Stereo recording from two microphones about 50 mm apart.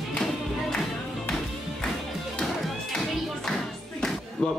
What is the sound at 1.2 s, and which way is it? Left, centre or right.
Music, centre.